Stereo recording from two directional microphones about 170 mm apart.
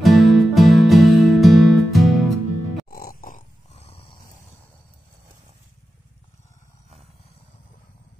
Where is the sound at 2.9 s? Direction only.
60° left (ahead or behind).